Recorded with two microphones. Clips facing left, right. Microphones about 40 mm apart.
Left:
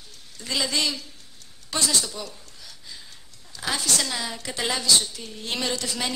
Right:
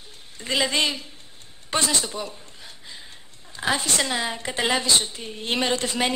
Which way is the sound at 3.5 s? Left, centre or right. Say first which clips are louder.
Right 3 dB; right.